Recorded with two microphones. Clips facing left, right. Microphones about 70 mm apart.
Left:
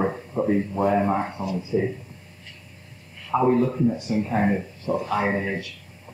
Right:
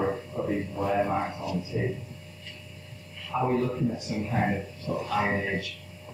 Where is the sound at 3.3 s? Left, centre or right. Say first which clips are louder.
Left 6 dB; left.